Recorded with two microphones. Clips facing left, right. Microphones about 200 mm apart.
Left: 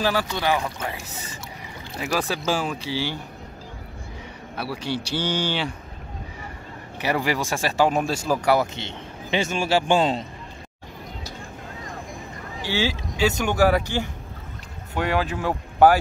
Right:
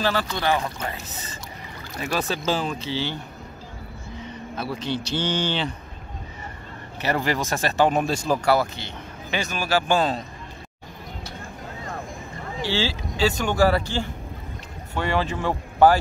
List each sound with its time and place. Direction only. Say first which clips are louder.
0.0 s a man's voice: left 1 dB; 10° left (ahead or behind)
4.6 s a man's voice: even; 10° left (ahead or behind)
7.0 s a man's voice: even; 10° left (ahead or behind)
8.5 s a man's voice: left 1 dB; 25° left (ahead or behind)
13.5 s a man's voice: left 1 dB; 10° left (ahead or behind)